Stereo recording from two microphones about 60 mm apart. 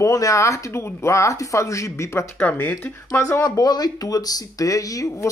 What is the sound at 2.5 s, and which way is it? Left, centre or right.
Speech, left.